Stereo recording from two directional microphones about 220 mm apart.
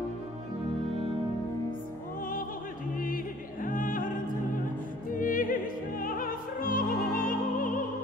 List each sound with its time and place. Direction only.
3.6 s opera: 40° left (ahead or behind)
5.1 s opera: 40° left (ahead or behind)